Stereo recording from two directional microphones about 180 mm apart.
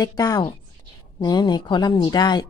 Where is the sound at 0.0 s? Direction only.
20° left (ahead or behind).